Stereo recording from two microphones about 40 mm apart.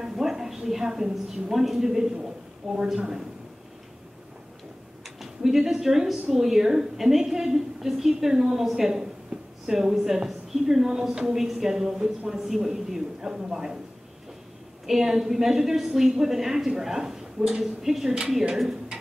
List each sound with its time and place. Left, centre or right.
0.0 s a woman's voice: centre
2.2 s a sound: centre
5.2 s a woman's voice: centre
9.3 s a sound: right
9.7 s a woman's voice: centre
14.9 s a woman's voice: centre